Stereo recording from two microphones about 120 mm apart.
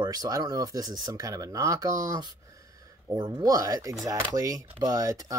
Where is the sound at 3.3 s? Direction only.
30° right (ahead or behind).